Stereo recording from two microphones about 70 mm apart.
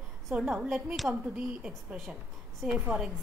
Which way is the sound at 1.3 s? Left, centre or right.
Centre.